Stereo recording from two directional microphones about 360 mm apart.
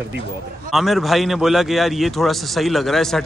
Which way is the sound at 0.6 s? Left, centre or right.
Centre.